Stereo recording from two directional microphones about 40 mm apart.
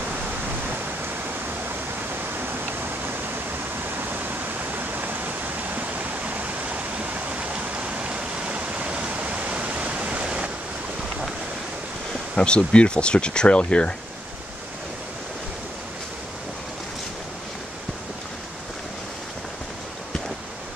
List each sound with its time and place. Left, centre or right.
2.3 s a sound: right
3.9 s pink noise: right
12.4 s speech: left